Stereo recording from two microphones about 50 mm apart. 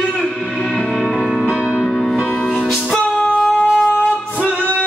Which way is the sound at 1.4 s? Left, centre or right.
Right.